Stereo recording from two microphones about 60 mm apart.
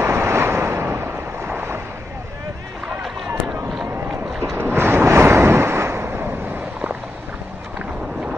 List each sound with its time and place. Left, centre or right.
0.0 s vehicle: right
1.5 s a sound: right
4.4 s boat: right
4.6 s waves: right